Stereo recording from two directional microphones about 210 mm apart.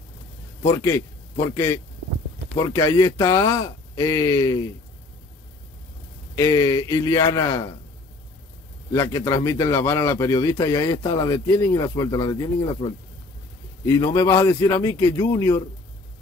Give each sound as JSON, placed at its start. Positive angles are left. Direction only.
{"t": 0.6, "sound": "a man's voice", "side_deg": 15}
{"t": 2.6, "sound": "a man's voice", "side_deg": 15}
{"t": 6.3, "sound": "a man's voice", "side_deg": 15}
{"t": 8.9, "sound": "a man's voice", "side_deg": 15}
{"t": 13.8, "sound": "a man's voice", "side_deg": 15}